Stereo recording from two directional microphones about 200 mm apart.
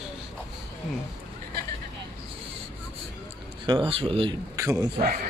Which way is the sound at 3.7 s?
25° right (ahead or behind).